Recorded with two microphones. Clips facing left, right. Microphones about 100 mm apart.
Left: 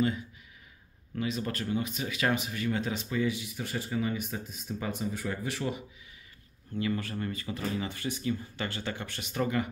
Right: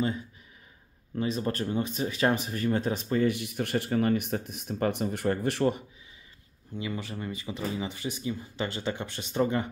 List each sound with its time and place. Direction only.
1.1 s speech: 35° right (ahead or behind); by 5.8 s 55° right (ahead or behind)
7.0 s speech: 15° right (ahead or behind)